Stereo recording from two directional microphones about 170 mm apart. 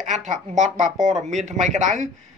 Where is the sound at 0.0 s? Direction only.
45° right (ahead or behind).